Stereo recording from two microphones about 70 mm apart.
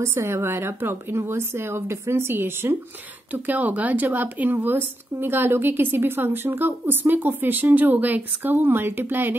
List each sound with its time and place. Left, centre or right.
0.0 s a woman's voice: right